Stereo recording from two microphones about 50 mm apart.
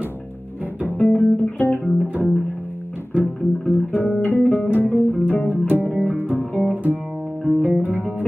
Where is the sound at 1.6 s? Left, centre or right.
Left.